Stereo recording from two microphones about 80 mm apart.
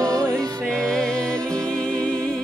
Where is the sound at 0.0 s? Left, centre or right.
Right.